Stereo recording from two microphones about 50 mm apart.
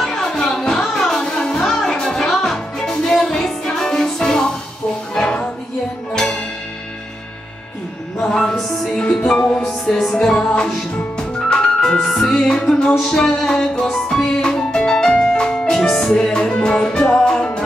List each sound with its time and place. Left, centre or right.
0.0 s music: centre
5.1 s a sound: centre
6.1 s music: centre
8.2 s music: centre